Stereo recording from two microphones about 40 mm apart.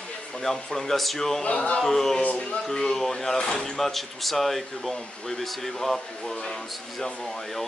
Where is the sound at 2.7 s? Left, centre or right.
Centre.